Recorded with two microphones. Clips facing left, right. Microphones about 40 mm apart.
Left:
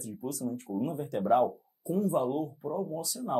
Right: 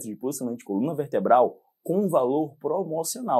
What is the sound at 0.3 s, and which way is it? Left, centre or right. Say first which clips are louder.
Speech: right 6 dB; right.